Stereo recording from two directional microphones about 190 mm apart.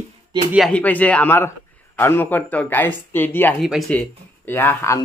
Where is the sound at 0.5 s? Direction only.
5° left (ahead or behind).